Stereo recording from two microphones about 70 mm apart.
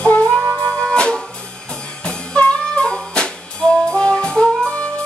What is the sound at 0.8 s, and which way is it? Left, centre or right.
Music, centre.